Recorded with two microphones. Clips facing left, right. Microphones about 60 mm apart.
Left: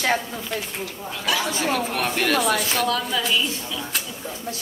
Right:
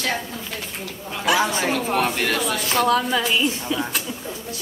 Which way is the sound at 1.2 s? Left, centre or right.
Right.